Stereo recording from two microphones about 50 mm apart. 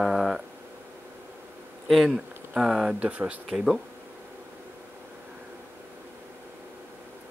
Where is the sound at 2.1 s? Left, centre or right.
Centre.